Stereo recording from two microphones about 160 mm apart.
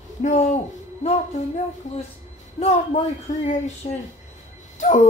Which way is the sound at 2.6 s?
45° left (ahead or behind).